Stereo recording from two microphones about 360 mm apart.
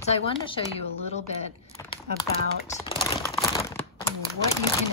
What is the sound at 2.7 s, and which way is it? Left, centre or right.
Crumpling, centre.